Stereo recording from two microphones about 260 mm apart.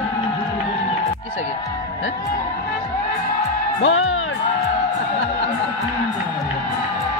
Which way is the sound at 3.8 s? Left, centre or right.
Left.